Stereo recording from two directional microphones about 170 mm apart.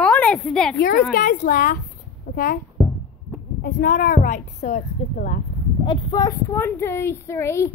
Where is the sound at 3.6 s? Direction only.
55° left (ahead or behind).